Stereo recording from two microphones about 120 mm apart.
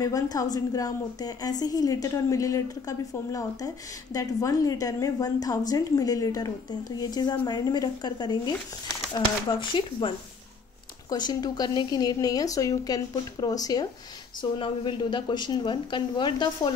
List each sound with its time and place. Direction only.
0.0 s a woman's voice: 30° left (ahead or behind)